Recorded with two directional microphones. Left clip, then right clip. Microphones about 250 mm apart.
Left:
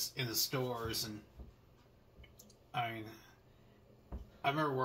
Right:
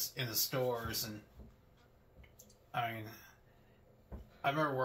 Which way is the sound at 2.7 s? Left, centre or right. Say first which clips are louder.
Right 1 dB; centre.